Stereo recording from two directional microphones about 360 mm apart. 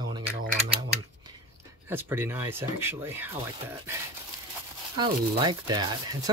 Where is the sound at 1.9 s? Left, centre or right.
Centre.